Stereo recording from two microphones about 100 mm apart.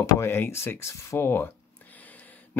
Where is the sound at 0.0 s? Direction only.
25° left (ahead or behind).